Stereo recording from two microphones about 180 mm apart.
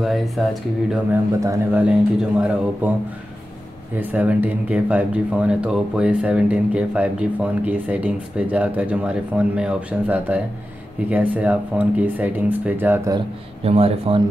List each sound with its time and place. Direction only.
0.0 s speech: centre (ahead or behind)
1.4 s speech: 15° right (ahead or behind)
4.0 s speech: 10° right (ahead or behind)
13.7 s speech: 35° right (ahead or behind)